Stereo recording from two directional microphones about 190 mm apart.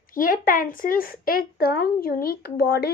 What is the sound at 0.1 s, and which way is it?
A woman's voice, 50° left (ahead or behind).